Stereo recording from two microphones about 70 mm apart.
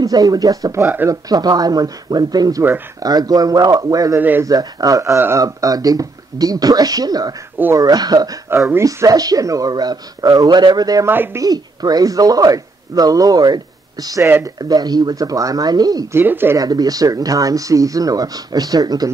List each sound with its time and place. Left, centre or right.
0.0 s speech: right
1.3 s speech: right
4.2 s speech: right
4.5 s speech: right
16.1 s speech: right
16.5 s speech: right